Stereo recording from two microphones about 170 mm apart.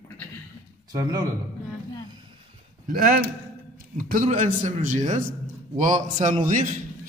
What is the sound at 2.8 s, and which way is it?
Speech, 55° right (ahead or behind).